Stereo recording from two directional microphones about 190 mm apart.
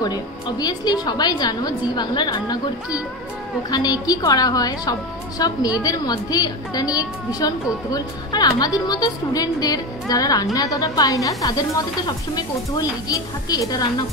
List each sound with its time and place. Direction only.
0.0 s a woman's voice: 20° left (ahead or behind)